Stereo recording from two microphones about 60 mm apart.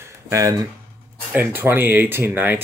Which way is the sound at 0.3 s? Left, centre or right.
Right.